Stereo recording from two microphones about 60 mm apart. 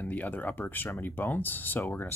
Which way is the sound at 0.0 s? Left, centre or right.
Left.